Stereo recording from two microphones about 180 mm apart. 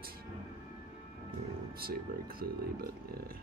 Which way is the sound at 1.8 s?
55° right (ahead or behind).